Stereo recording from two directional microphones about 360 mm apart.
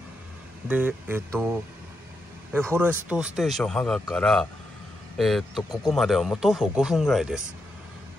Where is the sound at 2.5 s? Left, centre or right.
Centre.